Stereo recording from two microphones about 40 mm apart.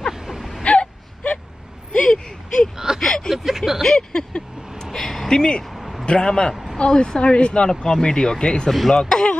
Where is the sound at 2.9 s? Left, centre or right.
Centre.